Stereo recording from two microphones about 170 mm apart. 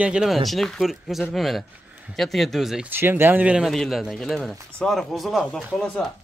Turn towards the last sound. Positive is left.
turn(degrees=0)  # may be behind; listen again after turning